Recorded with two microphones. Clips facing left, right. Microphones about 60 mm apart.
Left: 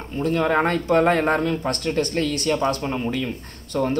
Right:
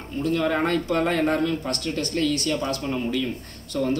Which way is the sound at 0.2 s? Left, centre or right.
Left.